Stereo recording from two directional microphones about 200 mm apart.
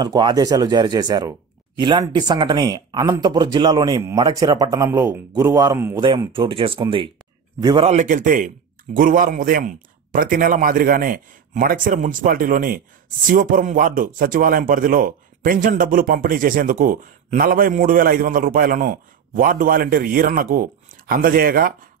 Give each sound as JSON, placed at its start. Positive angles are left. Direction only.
{"t": 0.0, "sound": "a man's voice", "side_deg": -20}